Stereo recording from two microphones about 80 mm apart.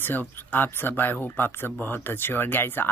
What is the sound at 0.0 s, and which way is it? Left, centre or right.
Speech, left.